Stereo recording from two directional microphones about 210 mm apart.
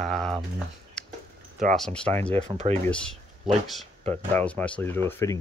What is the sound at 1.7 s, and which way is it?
Speech, 5° left (ahead or behind).